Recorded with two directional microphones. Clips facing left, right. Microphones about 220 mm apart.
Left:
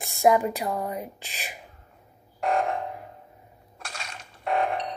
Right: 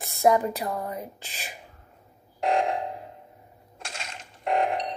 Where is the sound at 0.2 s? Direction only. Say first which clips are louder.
Left 1 dB; 15° left (ahead or behind).